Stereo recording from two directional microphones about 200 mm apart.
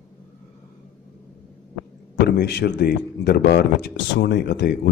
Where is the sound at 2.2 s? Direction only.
55° left (ahead or behind).